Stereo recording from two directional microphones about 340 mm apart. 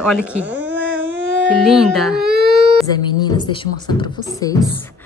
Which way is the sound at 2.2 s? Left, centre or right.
Right.